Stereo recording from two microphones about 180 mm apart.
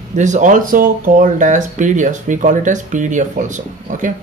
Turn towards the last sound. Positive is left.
turn(degrees=-45)  # may be behind; listen again after turning